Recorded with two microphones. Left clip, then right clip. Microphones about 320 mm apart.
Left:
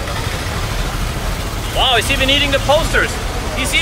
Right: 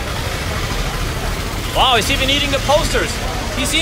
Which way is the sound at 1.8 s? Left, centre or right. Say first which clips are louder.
Left 1 dB; centre.